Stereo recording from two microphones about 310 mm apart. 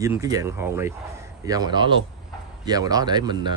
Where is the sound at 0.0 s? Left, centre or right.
Centre.